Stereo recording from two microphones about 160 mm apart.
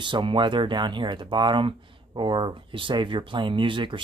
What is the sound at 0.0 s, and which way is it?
Speech, 30° right (ahead or behind).